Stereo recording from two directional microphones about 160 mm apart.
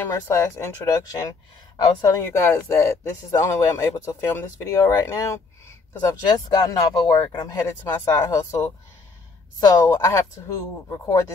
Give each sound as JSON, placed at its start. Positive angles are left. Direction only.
{"t": 0.0, "sound": "speech", "side_deg": 20}